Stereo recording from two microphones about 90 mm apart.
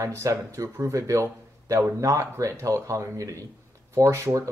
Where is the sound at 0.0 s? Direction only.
35° right (ahead or behind).